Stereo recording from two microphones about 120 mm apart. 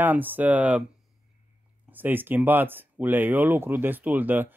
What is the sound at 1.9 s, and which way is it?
Speech, 15° right (ahead or behind).